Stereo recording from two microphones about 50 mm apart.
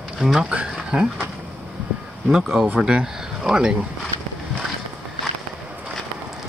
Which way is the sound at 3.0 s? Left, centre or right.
Centre.